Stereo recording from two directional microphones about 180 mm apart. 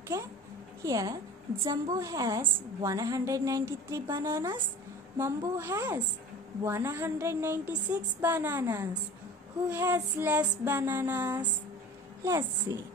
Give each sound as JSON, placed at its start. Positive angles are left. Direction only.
{"t": 0.8, "sound": "a woman's voice", "side_deg": -20}
{"t": 12.7, "sound": "a woman's voice", "side_deg": -20}